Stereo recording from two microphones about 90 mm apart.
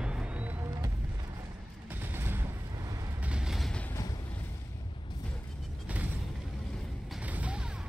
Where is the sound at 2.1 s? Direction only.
25° right (ahead or behind).